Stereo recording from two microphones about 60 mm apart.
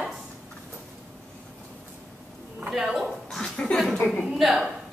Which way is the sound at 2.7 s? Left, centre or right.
Centre.